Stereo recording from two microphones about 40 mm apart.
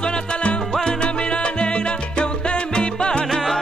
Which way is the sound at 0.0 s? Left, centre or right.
Left.